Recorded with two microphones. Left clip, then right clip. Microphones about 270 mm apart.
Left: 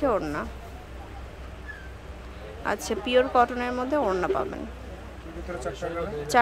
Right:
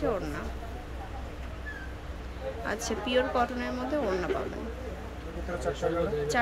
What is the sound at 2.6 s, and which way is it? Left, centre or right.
A woman's voice, centre.